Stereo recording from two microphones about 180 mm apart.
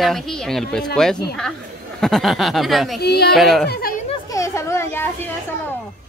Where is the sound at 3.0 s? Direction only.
65° left (ahead or behind).